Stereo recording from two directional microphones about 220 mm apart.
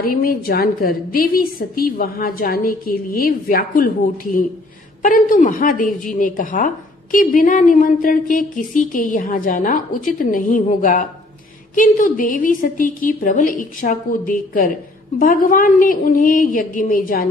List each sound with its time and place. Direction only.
0.0 s a woman's voice: 40° left (ahead or behind)
5.0 s a woman's voice: 35° left (ahead or behind)